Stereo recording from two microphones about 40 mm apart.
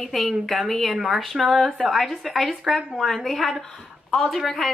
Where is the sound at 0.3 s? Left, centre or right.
Centre.